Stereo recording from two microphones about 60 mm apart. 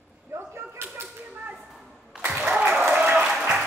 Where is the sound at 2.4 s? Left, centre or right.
Centre.